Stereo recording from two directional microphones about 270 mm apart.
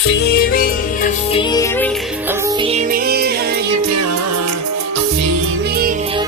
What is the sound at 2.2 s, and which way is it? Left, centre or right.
Music, centre.